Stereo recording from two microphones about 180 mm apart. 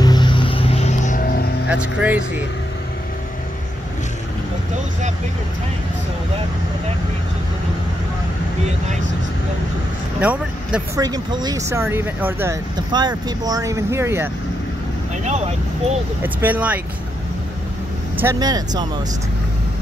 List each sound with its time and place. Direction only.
0.0 s music: 25° left (ahead or behind); by 1.5 s 55° left (ahead or behind)
1.7 s speech: 5° right (ahead or behind)
10.2 s speech: 5° right (ahead or behind)
11.0 s speech: 20° right (ahead or behind)
12.7 s speech: 25° right (ahead or behind)
16.2 s speech: 10° right (ahead or behind)
18.1 s speech: 15° right (ahead or behind)